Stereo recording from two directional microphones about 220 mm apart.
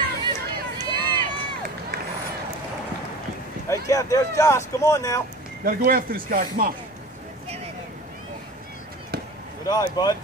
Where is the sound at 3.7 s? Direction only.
15° left (ahead or behind).